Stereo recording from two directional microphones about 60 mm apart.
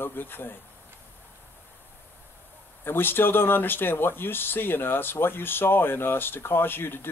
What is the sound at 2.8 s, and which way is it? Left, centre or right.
Speech, left.